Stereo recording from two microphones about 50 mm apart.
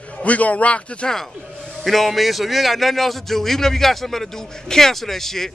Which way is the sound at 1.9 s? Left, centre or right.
Centre.